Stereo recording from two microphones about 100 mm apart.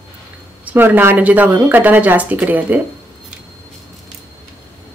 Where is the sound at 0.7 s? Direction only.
20° right (ahead or behind).